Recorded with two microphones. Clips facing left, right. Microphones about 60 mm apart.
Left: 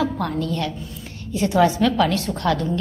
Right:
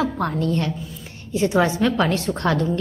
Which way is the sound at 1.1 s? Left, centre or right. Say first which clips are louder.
Left 1 dB; right.